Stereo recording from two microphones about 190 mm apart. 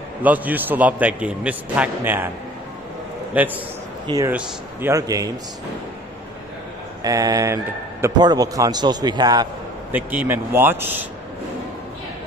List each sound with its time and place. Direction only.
0.2 s a man's voice: 10° right (ahead or behind)
3.3 s a man's voice: 10° right (ahead or behind)
7.0 s a man's voice: 20° right (ahead or behind)
9.9 s a man's voice: 10° right (ahead or behind)